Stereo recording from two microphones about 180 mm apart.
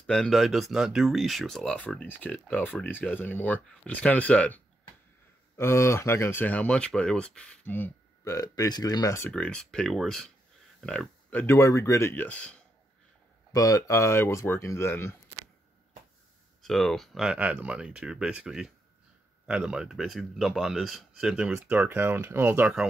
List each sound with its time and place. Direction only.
0.0 s speech: 5° left (ahead or behind)
5.6 s speech: 15° left (ahead or behind)
9.3 s speech: 5° left (ahead or behind)
13.5 s speech: 20° left (ahead or behind)
16.6 s speech: centre (ahead or behind)